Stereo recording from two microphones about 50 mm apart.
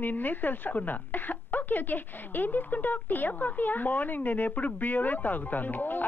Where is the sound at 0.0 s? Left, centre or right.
Left.